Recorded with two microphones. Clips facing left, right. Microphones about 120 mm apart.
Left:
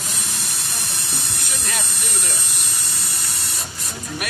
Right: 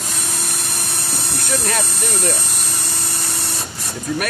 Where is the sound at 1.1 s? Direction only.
50° right (ahead or behind).